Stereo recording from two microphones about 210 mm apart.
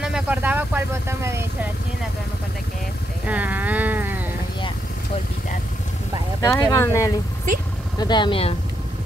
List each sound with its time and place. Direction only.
0.0 s speech: 5° right (ahead or behind)
3.3 s music: 10° right (ahead or behind)
6.4 s speech: 15° left (ahead or behind)